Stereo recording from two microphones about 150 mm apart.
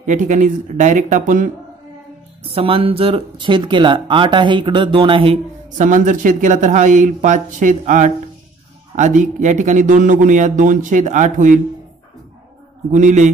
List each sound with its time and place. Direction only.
0.0 s a man's voice: 55° right (ahead or behind)
2.4 s speech: 40° right (ahead or behind)
5.8 s a man's voice: 55° right (ahead or behind)
12.9 s a man's voice: 55° right (ahead or behind)